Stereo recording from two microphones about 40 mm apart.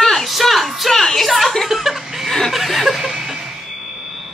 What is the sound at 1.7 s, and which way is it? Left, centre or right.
Chuckle, centre.